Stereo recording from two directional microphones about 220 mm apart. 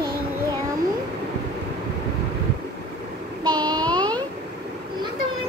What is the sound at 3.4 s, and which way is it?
Child singing, 20° right (ahead or behind).